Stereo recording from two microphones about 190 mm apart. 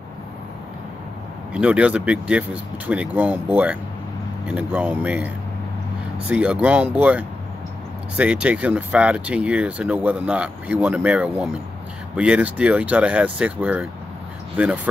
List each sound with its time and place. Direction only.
1.5 s speech: 5° right (ahead or behind)